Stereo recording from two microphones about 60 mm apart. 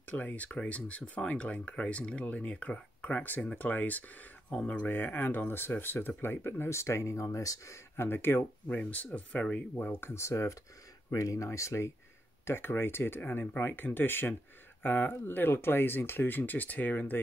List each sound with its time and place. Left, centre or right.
0.0 s speech: left
4.8 s speech: left
8.6 s speech: left
9.9 s speech: left
12.4 s speech: left